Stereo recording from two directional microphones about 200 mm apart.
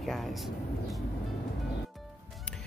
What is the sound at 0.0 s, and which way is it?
Vehicle, centre (ahead or behind).